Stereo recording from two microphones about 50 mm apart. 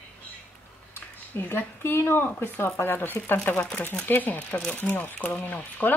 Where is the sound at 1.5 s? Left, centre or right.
Left.